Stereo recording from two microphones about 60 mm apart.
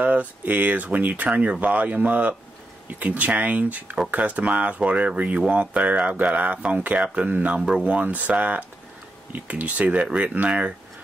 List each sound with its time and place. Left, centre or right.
0.0 s speech: right